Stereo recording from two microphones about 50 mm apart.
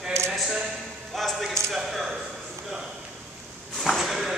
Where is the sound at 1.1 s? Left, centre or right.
Centre.